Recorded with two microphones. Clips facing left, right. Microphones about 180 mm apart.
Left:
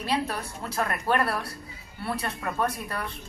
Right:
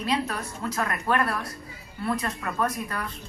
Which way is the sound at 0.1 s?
30° left (ahead or behind).